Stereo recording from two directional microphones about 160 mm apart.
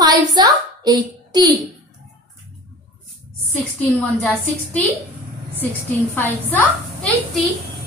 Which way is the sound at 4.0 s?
10° left (ahead or behind).